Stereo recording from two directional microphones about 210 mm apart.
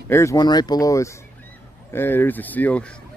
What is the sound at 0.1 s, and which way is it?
Speech, 15° left (ahead or behind).